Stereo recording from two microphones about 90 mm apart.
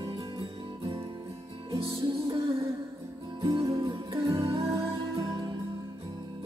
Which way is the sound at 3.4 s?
70° right (ahead or behind).